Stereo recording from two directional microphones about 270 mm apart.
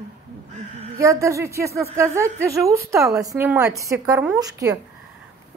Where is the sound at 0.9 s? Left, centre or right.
Centre.